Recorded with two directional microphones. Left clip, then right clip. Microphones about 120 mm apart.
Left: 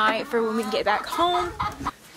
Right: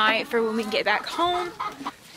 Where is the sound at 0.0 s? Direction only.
Centre (ahead or behind).